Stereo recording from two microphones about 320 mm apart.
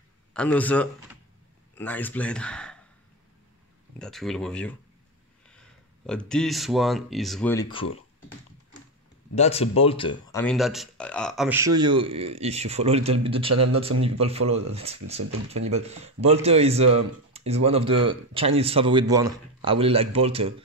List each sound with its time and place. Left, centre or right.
0.3 s a man's voice: centre
4.0 s speech: centre
9.3 s speech: centre
10.4 s speech: centre